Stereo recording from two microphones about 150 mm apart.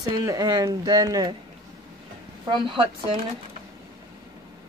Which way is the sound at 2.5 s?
35° right (ahead or behind).